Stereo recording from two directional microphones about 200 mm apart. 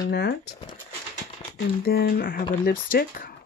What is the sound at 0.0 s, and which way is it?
Speech, 55° left (ahead or behind).